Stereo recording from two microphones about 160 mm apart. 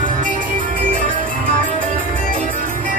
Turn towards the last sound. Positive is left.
turn(degrees=-60)  # may be behind; listen again after turning